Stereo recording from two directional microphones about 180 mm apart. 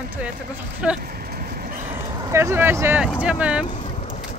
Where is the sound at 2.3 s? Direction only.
15° right (ahead or behind).